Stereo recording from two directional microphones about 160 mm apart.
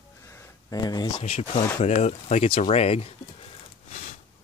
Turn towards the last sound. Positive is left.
turn(degrees=40)  # may be behind; listen again after turning